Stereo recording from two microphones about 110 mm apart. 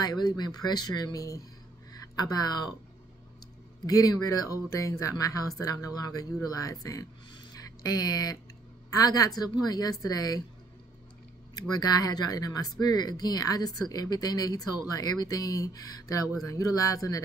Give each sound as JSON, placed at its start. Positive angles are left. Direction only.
{"t": 0.0, "sound": "speech", "side_deg": 40}
{"t": 3.8, "sound": "speech", "side_deg": 35}
{"t": 11.5, "sound": "speech", "side_deg": 35}